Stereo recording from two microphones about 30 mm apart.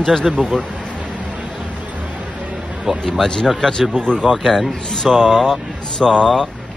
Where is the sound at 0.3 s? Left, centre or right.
Centre.